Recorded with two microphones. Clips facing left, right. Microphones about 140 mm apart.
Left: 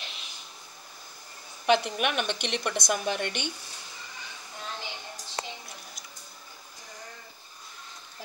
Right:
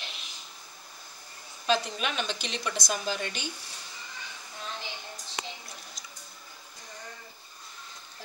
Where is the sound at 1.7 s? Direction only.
65° left (ahead or behind).